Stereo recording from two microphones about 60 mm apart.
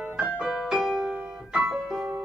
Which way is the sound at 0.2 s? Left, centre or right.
Centre.